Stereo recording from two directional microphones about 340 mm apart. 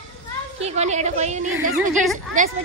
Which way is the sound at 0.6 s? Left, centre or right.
Centre.